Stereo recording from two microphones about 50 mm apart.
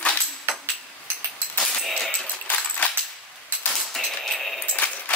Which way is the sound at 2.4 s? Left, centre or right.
Left.